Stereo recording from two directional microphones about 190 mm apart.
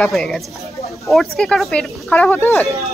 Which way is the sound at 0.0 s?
Centre (ahead or behind).